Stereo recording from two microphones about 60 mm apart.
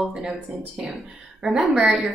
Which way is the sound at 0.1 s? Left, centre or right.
Centre.